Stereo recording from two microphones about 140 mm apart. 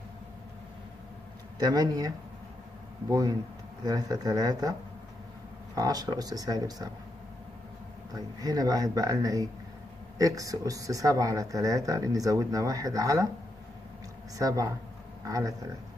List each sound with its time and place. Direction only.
1.6 s speech: 25° right (ahead or behind)
5.8 s speech: 25° right (ahead or behind)
8.1 s speech: 25° right (ahead or behind)
14.4 s speech: 25° right (ahead or behind)